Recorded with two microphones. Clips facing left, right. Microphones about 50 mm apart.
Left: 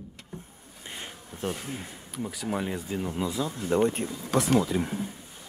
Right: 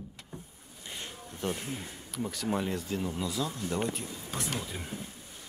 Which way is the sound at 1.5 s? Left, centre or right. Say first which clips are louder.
Left 2 dB; centre.